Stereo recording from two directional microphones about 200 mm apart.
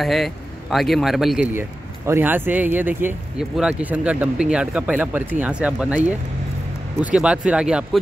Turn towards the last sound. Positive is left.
turn(degrees=-5)  # may be behind; listen again after turning